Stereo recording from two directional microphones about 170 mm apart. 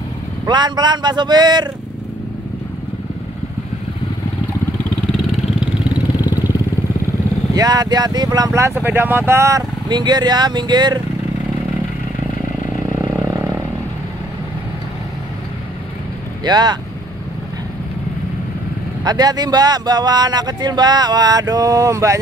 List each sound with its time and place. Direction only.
0.5 s speech: 25° right (ahead or behind)
6.2 s vehicle: 20° left (ahead or behind)
7.5 s speech: 20° right (ahead or behind)
16.4 s speech: 25° right (ahead or behind)
19.0 s speech: 25° right (ahead or behind)